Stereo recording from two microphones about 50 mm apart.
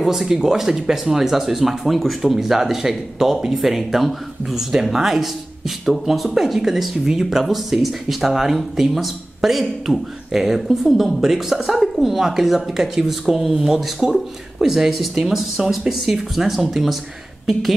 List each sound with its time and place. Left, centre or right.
0.0 s speech: centre
13.6 s speech: centre